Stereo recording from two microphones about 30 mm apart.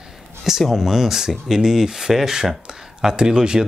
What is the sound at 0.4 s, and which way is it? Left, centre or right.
Speech, centre.